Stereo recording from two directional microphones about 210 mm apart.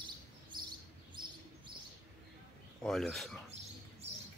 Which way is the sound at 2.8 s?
Centre (ahead or behind).